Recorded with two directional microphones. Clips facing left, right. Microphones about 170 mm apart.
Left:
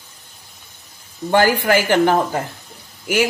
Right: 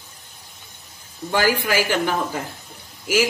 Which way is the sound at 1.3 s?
55° left (ahead or behind).